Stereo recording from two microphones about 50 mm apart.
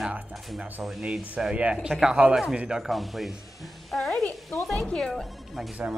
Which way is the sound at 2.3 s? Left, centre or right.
Centre.